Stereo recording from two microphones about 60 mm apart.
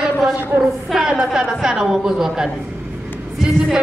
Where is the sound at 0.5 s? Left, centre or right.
Right.